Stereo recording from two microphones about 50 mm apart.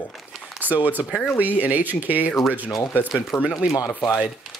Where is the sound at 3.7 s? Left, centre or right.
Left.